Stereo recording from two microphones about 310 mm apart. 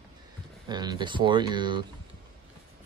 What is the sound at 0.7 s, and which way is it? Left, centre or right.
Speech, centre.